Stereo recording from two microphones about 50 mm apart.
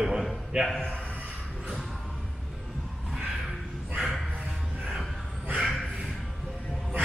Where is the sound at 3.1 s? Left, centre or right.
Centre.